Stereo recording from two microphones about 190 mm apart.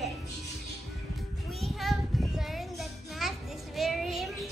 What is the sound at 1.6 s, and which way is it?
Child singing, centre (ahead or behind).